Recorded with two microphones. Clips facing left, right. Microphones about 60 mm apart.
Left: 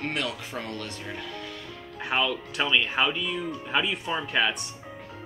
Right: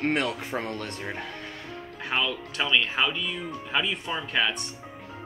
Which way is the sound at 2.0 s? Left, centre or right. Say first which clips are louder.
Left 2 dB; centre.